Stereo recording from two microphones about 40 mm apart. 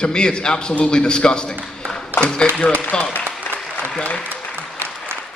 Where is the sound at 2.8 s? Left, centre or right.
Left.